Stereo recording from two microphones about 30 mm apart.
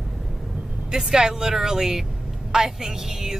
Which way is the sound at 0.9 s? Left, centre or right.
Centre.